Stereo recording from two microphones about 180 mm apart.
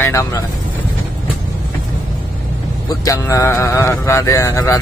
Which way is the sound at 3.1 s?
15° left (ahead or behind).